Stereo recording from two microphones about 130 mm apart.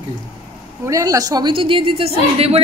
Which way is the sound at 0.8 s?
25° right (ahead or behind).